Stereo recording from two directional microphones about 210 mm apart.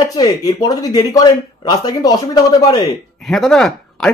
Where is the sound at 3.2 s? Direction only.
Centre (ahead or behind).